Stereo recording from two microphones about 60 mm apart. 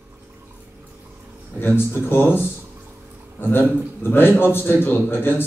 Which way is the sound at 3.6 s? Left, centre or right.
Right.